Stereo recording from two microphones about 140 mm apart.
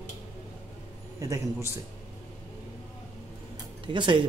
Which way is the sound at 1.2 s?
20° right (ahead or behind).